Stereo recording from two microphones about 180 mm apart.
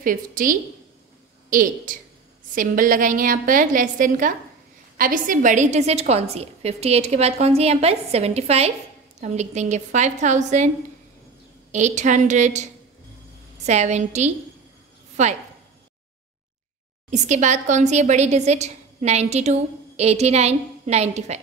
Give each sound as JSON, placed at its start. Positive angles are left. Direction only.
{"t": 0.0, "sound": "a woman's voice", "side_deg": -50}
{"t": 11.7, "sound": "a woman's voice", "side_deg": -40}
{"t": 13.7, "sound": "a woman's voice", "side_deg": -40}
{"t": 17.1, "sound": "a woman's voice", "side_deg": -40}